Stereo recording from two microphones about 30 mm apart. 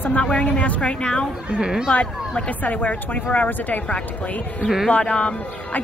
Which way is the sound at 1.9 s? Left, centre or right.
Left.